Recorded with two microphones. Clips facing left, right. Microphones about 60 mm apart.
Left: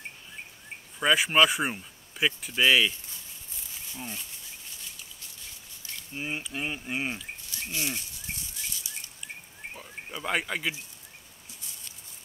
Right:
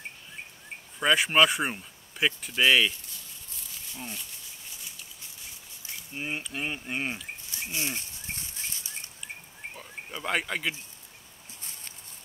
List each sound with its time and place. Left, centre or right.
0.9 s speech: centre
3.9 s speech: centre
6.1 s speech: centre
7.7 s a sound: right
9.8 s speech: centre